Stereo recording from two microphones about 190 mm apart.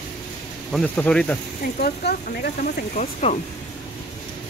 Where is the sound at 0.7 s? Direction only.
5° left (ahead or behind).